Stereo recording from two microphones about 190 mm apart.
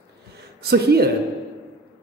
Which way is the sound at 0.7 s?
55° right (ahead or behind).